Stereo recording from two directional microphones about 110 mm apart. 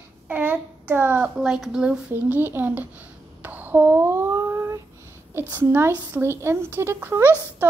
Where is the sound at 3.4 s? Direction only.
15° right (ahead or behind).